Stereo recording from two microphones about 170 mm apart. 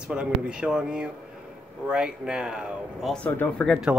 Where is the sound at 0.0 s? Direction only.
5° right (ahead or behind).